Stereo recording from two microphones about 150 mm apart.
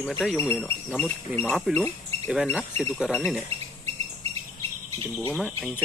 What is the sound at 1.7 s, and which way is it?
Speech, 5° right (ahead or behind).